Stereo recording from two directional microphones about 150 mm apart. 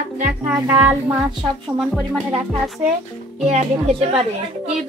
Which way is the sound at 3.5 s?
45° right (ahead or behind).